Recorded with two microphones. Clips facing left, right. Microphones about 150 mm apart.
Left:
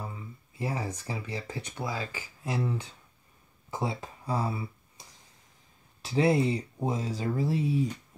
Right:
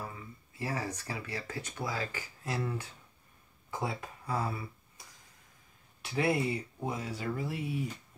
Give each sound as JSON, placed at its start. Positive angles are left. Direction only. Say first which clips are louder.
{"t": 0.5, "sound": "a sound", "louder": "left 3 dB", "side_deg": 25}
{"t": 0.8, "sound": "speech", "louder": "left 3 dB", "side_deg": 20}
{"t": 3.7, "sound": "speech", "louder": "left 3 dB", "side_deg": 25}
{"t": 6.0, "sound": "speech", "louder": "left 5 dB", "side_deg": 25}